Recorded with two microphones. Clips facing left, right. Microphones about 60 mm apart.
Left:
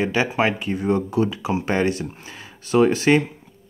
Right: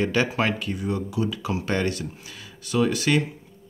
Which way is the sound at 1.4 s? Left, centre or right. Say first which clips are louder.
Left 4 dB; left.